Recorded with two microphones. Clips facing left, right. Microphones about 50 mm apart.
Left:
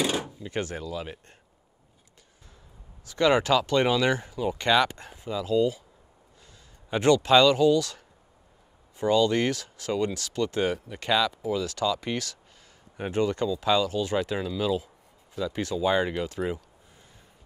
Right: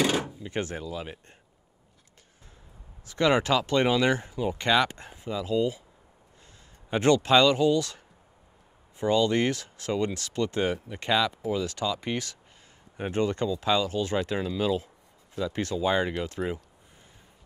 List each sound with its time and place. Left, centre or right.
0.0 s drawer open or close: right
0.5 s speech: right
3.1 s speech: right
6.9 s speech: right
16.0 s speech: centre